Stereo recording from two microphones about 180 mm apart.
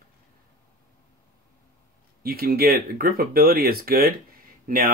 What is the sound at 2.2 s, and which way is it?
Speech, 55° right (ahead or behind).